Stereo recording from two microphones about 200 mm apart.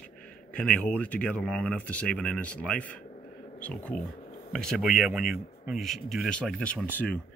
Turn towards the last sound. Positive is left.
turn(degrees=5)  # may be behind; listen again after turning